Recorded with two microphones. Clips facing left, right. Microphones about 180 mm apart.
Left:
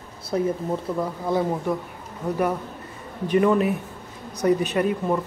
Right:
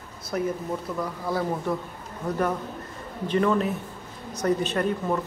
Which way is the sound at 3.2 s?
15° left (ahead or behind).